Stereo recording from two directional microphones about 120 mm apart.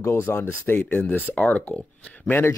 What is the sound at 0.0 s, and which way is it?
Speech, 25° left (ahead or behind).